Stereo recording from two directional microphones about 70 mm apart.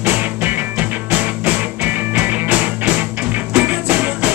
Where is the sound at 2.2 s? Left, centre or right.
Right.